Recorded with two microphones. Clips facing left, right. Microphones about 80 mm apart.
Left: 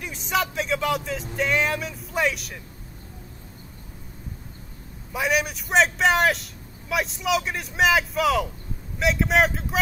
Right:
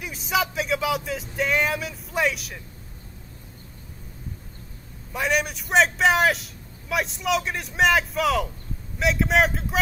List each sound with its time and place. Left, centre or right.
0.0 s a sound: centre
1.3 s vehicle: centre
5.1 s a man's voice: centre